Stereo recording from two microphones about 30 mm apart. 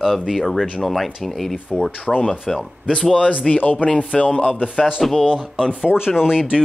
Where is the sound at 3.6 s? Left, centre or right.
Left.